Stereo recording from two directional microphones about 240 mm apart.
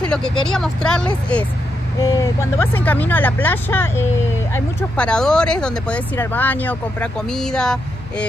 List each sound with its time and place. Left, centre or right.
0.1 s speech: centre
2.0 s speech: centre